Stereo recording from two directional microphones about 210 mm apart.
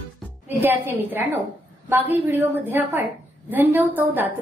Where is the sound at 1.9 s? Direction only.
10° right (ahead or behind).